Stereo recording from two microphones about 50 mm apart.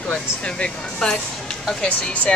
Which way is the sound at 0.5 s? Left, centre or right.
Centre.